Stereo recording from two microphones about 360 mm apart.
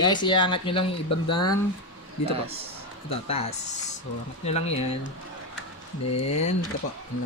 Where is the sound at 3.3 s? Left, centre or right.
Centre.